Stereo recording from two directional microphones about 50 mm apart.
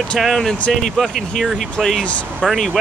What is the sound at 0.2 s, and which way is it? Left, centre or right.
Speech, centre.